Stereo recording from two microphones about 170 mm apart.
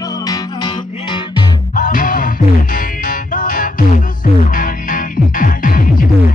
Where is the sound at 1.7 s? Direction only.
55° left (ahead or behind).